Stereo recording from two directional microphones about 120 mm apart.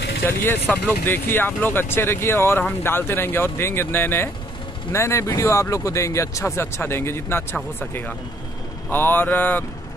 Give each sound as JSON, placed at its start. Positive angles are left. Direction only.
{"t": 0.2, "sound": "speech", "side_deg": 20}